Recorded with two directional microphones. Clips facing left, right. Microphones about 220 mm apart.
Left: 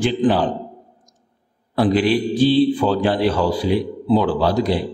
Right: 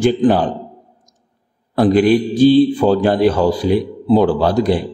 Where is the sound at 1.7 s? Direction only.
45° right (ahead or behind).